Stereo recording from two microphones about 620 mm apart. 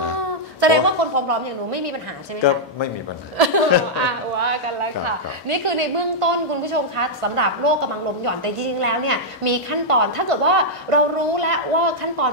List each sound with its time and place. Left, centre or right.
0.6 s a sound: right
3.3 s a woman's voice: right
5.0 s a woman's voice: right